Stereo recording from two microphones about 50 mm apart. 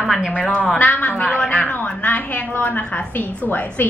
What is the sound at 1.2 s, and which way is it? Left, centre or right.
Speech, left.